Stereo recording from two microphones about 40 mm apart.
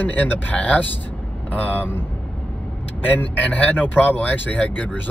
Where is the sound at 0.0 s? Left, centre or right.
Left.